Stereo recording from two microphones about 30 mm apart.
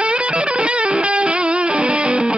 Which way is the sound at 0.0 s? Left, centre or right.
Right.